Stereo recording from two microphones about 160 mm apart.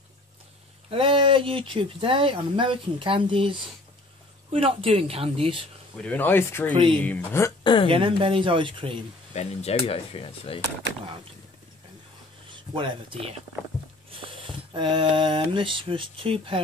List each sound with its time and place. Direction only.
0.8 s speech: 35° right (ahead or behind)
5.9 s speech: 10° left (ahead or behind)
7.6 s speech: 30° left (ahead or behind)
7.9 s speech: 35° right (ahead or behind)
9.3 s speech: 45° left (ahead or behind)
12.7 s speech: 30° right (ahead or behind)